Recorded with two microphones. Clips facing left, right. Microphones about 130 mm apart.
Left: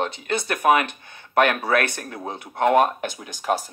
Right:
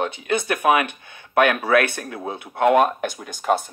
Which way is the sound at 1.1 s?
45° left (ahead or behind).